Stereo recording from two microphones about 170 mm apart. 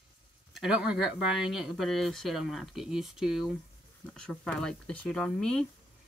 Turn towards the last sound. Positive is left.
turn(degrees=5)  # may be behind; listen again after turning